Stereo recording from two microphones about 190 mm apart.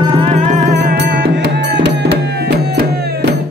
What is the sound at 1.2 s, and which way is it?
Music, 65° right (ahead or behind).